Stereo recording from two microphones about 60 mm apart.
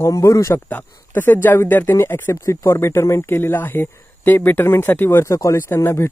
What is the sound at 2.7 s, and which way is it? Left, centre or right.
A man's voice, left.